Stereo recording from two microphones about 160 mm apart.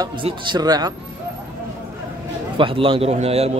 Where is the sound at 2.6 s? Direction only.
35° right (ahead or behind).